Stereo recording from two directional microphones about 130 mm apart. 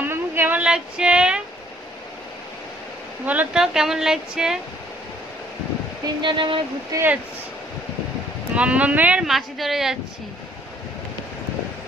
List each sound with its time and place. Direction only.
0.0 s a sound: 15° right (ahead or behind)
3.3 s speech: 10° right (ahead or behind)
6.0 s speech: 35° right (ahead or behind)
6.9 s speech: 25° right (ahead or behind)
8.5 s speech: 10° right (ahead or behind)